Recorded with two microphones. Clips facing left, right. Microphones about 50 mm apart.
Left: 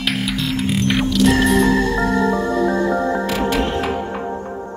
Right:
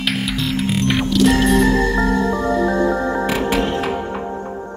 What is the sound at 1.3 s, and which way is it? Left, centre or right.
Music, left.